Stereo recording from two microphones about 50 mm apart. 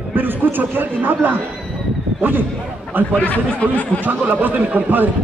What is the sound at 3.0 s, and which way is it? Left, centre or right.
Speech, right.